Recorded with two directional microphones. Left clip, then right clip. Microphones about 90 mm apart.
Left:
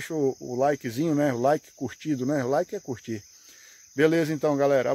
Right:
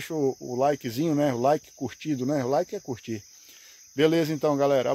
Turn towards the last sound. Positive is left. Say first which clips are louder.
# even
turn(degrees=-15)  # may be behind; listen again after turning